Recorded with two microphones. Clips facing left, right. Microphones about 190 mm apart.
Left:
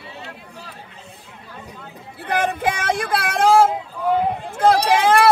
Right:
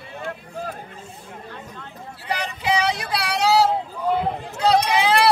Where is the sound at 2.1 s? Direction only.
55° left (ahead or behind).